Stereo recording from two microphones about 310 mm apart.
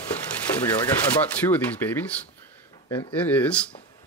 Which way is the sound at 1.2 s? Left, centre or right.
Centre.